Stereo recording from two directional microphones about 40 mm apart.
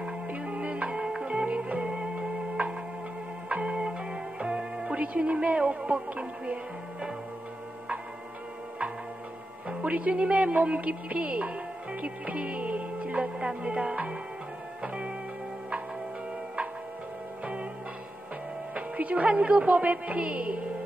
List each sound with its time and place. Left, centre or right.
0.5 s music: right
6.0 s speech: right
9.7 s speech: right
14.8 s music: right
18.8 s speech: right